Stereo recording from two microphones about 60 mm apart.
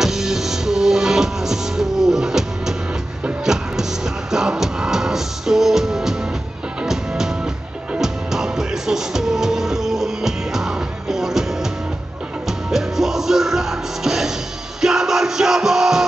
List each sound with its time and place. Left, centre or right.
0.0 s music: centre
7.9 s music: centre
12.4 s music: centre